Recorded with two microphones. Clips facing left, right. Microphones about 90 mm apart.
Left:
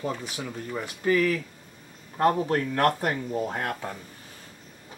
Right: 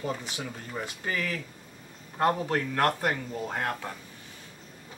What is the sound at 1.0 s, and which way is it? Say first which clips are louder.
Speech: left 10 dB; 25° right (ahead or behind).